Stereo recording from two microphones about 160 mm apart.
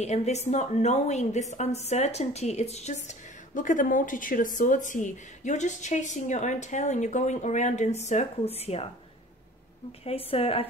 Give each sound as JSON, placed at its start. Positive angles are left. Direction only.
{"t": 0.0, "sound": "a woman's voice", "side_deg": 45}
{"t": 10.0, "sound": "a woman's voice", "side_deg": 40}